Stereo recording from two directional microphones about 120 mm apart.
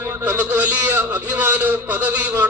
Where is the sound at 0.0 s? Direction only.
15° right (ahead or behind).